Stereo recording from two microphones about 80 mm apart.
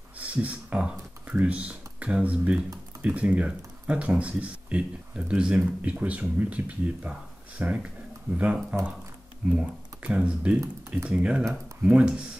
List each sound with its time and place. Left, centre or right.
0.2 s speech: centre